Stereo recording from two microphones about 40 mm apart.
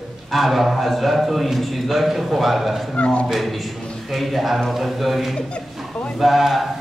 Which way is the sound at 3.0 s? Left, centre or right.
Left.